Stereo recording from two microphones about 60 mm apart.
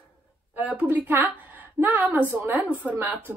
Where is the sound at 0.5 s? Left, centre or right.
Right.